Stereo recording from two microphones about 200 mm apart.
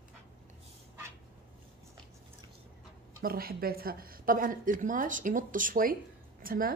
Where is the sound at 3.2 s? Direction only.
50° right (ahead or behind).